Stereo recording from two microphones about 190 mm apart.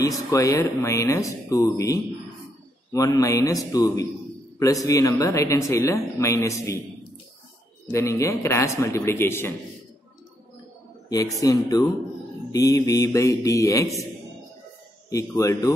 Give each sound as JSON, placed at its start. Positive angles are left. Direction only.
{"t": 0.3, "sound": "speech", "side_deg": 15}
{"t": 7.9, "sound": "speech", "side_deg": 15}
{"t": 11.1, "sound": "speech", "side_deg": 20}
{"t": 15.0, "sound": "speech", "side_deg": 15}